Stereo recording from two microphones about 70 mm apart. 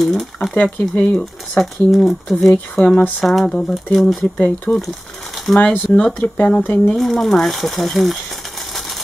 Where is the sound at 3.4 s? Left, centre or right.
Centre.